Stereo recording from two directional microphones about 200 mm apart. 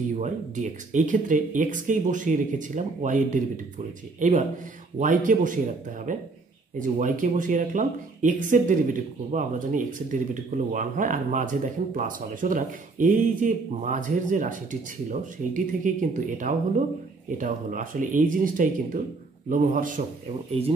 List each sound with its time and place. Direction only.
0.2 s speech: 40° right (ahead or behind)